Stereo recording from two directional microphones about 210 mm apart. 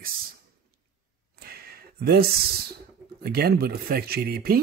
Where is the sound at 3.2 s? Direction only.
45° right (ahead or behind).